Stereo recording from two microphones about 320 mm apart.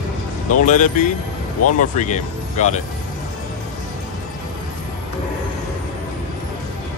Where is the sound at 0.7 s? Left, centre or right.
Left.